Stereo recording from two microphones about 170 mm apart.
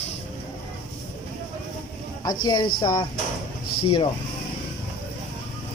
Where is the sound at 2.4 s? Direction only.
25° left (ahead or behind).